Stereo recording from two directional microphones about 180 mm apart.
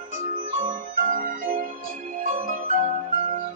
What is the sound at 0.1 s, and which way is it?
Music, 45° right (ahead or behind).